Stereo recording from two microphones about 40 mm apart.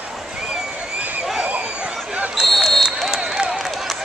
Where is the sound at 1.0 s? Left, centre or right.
Right.